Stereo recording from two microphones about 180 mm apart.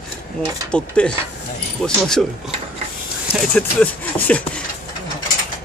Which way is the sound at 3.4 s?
5° left (ahead or behind).